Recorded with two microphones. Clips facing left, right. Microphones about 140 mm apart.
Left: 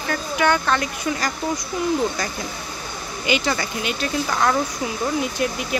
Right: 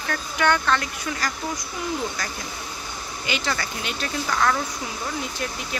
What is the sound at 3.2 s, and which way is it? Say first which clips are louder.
Speech: left 6 dB; 15° left (ahead or behind).